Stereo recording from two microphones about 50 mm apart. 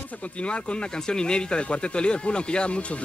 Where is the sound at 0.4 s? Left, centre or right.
Left.